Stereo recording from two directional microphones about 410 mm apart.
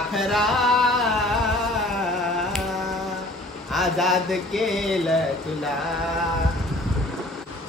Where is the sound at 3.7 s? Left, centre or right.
Centre.